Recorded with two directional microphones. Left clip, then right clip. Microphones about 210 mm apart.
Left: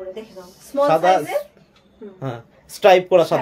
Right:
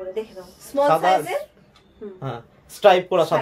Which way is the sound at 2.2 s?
35° left (ahead or behind).